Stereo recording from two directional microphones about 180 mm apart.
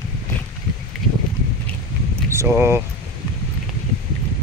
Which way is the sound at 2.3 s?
15° right (ahead or behind).